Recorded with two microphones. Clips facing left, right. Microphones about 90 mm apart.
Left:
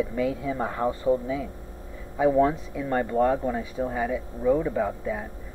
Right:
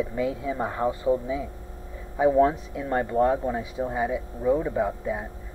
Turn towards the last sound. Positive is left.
turn(degrees=-20)  # may be behind; listen again after turning